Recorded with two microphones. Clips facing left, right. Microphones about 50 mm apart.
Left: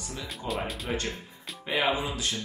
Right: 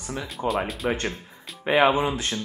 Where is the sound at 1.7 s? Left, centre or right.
Right.